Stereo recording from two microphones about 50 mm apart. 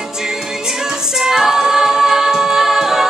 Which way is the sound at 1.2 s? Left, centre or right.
Centre.